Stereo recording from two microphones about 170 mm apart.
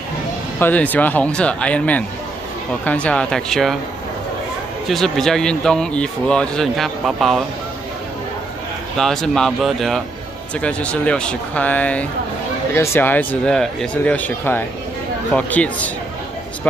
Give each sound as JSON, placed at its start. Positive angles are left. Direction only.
{"t": 0.6, "sound": "speech", "side_deg": 10}
{"t": 4.8, "sound": "speech", "side_deg": 0}
{"t": 8.9, "sound": "speech", "side_deg": 5}